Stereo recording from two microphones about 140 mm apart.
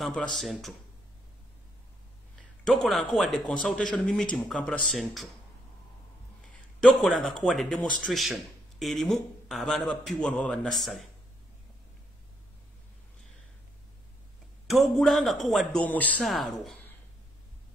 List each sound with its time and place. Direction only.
0.0 s speech: 5° left (ahead or behind)
2.6 s speech: centre (ahead or behind)
6.4 s speech: 5° left (ahead or behind)
14.7 s speech: centre (ahead or behind)
15.8 s speech: 10° left (ahead or behind)
16.3 s speech: centre (ahead or behind)